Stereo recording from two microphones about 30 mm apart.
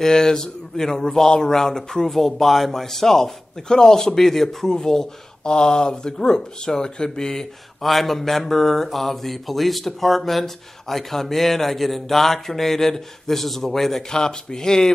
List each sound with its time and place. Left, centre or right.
0.0 s speech: centre
2.0 s speech: centre
3.6 s speech: left
5.4 s speech: left
7.8 s speech: centre
14.0 s speech: left